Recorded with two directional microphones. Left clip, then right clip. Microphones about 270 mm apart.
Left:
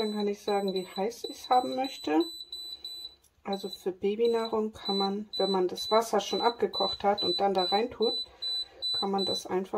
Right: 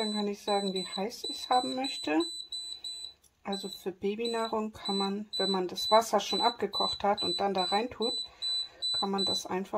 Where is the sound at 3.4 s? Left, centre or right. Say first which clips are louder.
Left 3 dB; right.